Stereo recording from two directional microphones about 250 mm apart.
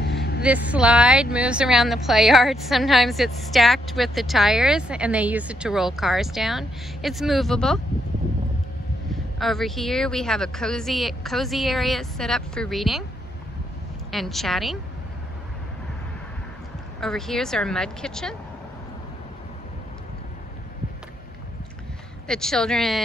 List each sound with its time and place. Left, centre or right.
0.0 s vehicle: left
0.4 s speech: centre
9.1 s speech: centre
14.1 s speech: centre
17.0 s speech: centre
22.3 s speech: centre